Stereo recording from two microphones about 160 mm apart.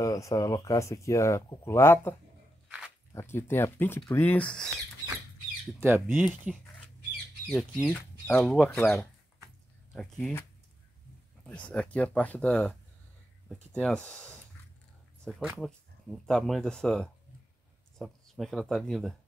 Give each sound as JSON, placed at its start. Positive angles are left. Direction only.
{"t": 0.0, "sound": "speech", "side_deg": 20}
{"t": 5.8, "sound": "speech", "side_deg": -15}
{"t": 6.2, "sound": "speech", "side_deg": 0}
{"t": 11.4, "sound": "speech", "side_deg": 10}
{"t": 15.5, "sound": "speech", "side_deg": 5}